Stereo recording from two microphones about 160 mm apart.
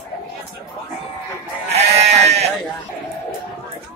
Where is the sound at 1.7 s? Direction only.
45° right (ahead or behind).